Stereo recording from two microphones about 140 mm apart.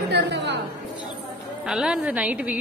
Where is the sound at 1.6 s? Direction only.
5° right (ahead or behind).